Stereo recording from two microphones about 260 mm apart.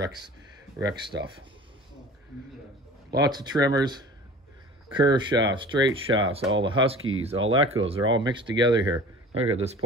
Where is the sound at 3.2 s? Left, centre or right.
Centre.